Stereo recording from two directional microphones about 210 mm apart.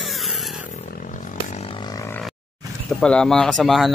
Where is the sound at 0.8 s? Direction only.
40° left (ahead or behind); by 2.1 s 15° left (ahead or behind).